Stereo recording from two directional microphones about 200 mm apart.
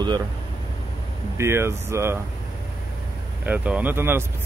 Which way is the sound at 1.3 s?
15° right (ahead or behind).